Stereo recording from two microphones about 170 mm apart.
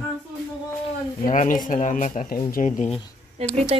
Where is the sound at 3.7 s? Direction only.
35° right (ahead or behind).